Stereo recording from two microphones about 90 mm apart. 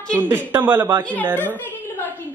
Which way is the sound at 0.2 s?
20° right (ahead or behind).